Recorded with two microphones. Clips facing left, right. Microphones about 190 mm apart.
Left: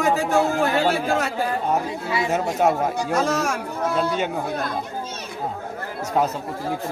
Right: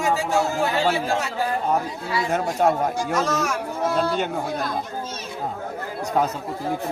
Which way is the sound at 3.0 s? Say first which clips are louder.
Left 1 dB; 55° left (ahead or behind).